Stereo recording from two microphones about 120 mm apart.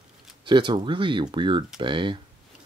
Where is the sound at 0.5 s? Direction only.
40° right (ahead or behind).